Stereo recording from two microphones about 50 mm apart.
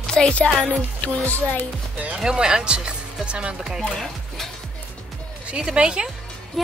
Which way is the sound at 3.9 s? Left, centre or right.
Centre.